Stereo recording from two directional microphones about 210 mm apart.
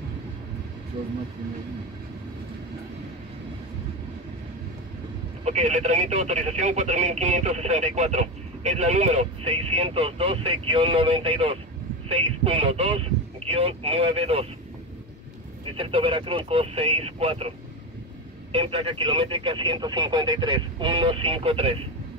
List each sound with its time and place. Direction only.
5.4 s speech: 30° right (ahead or behind)
15.7 s speech: 25° right (ahead or behind)
18.5 s speech: 25° right (ahead or behind)